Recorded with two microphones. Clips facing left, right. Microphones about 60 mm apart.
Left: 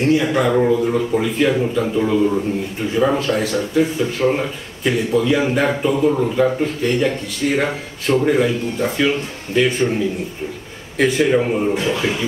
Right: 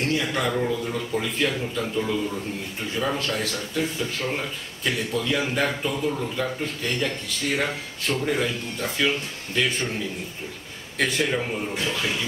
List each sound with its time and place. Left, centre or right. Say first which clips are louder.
0.0 s a man's voice: left 9 dB; centre
11.7 s a man's voice: left 7 dB; centre